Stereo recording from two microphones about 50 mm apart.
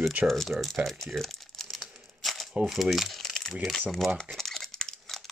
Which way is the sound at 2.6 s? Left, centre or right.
Centre.